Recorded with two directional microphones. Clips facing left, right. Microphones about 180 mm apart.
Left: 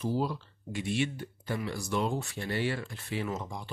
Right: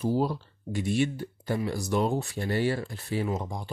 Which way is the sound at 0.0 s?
40° right (ahead or behind).